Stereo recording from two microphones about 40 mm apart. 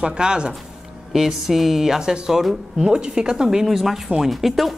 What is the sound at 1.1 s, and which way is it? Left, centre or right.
A woman's voice, centre.